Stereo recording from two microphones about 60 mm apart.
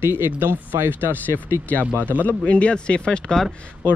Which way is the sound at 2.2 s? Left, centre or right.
Left.